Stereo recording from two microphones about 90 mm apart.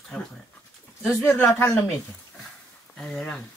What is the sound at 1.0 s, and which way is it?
Speech, 25° left (ahead or behind).